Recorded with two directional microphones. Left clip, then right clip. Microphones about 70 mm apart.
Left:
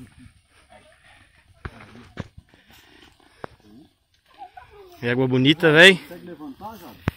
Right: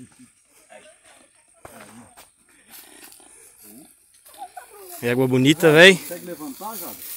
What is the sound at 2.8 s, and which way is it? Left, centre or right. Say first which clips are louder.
Purr: right 4 dB; right.